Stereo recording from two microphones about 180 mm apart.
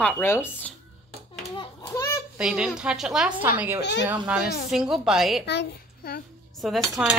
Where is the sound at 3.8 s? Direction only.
75° left (ahead or behind).